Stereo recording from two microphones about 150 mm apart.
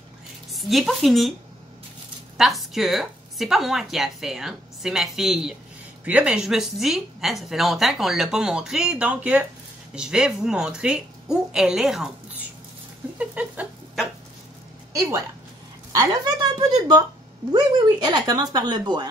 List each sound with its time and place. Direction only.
0.5 s a woman's voice: centre (ahead or behind)
2.3 s a woman's voice: centre (ahead or behind)
13.2 s a sound: 10° right (ahead or behind)
14.9 s a woman's voice: 20° right (ahead or behind)